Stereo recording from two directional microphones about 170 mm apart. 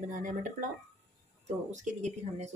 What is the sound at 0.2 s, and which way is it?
Speech, 50° right (ahead or behind).